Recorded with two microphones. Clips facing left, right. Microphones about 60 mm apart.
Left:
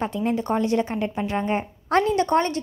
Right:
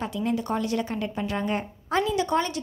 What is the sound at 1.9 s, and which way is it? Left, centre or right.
Speech, left.